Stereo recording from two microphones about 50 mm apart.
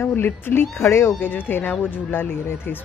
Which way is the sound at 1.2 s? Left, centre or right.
Left.